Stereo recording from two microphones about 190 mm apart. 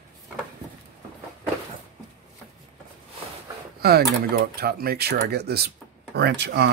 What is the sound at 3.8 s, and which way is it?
Speech, 55° right (ahead or behind).